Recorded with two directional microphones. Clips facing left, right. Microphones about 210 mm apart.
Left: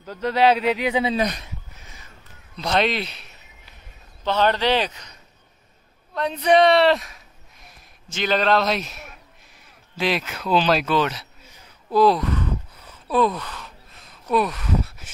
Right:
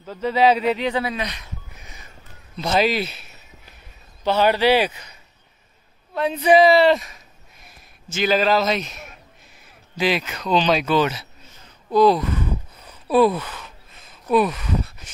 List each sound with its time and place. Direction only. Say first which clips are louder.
0.0 s speech: right 1 dB; 5° right (ahead or behind)
0.6 s speech: even; 5° left (ahead or behind)
1.1 s speech: left 6 dB; 45° left (ahead or behind)
2.5 s a man's voice: right 2 dB; 5° right (ahead or behind)
11.4 s a sound: right 1 dB; 10° left (ahead or behind)